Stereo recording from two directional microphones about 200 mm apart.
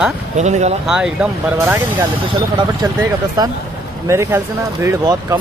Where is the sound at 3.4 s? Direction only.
20° right (ahead or behind).